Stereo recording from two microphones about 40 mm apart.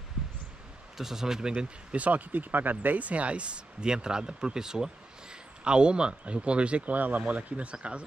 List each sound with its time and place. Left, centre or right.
0.9 s speech: centre
2.0 s speech: right
7.0 s speech: right